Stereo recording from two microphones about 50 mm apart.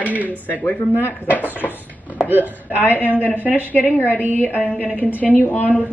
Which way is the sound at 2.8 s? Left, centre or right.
Left.